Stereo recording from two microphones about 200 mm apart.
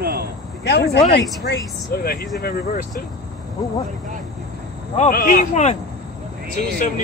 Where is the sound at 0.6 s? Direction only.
55° left (ahead or behind).